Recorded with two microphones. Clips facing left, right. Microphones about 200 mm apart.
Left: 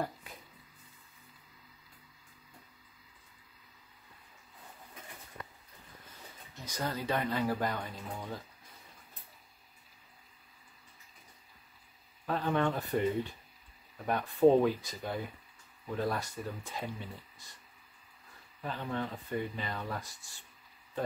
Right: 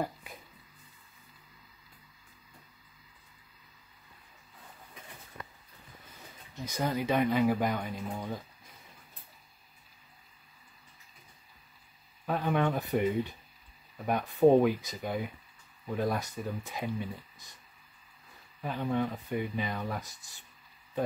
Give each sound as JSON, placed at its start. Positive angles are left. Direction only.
{"t": 6.7, "sound": "speech", "side_deg": -15}
{"t": 12.3, "sound": "speech", "side_deg": -10}
{"t": 18.6, "sound": "speech", "side_deg": -10}